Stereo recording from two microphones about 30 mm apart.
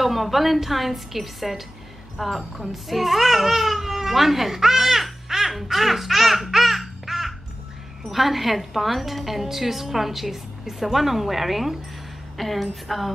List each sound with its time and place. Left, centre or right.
0.0 s a woman's voice: centre
5.3 s baby laughter: centre
8.0 s a woman's voice: centre